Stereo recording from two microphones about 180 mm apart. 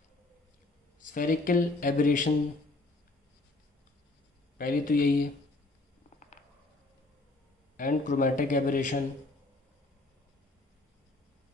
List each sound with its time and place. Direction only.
1.1 s speech: 50° left (ahead or behind)
4.6 s speech: 55° left (ahead or behind)
7.7 s speech: 45° left (ahead or behind)